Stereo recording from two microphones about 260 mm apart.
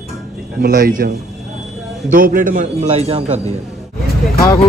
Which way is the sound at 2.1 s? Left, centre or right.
Right.